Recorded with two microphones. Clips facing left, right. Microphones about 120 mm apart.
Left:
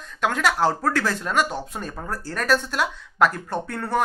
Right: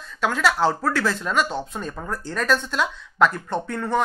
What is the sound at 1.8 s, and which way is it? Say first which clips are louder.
Speech: right 1 dB; 45° left (ahead or behind).